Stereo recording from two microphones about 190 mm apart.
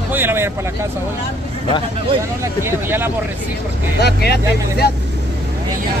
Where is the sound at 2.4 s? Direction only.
10° right (ahead or behind).